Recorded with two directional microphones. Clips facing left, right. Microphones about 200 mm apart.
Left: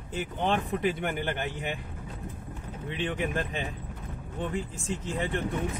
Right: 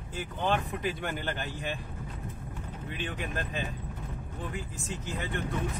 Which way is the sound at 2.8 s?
25° left (ahead or behind).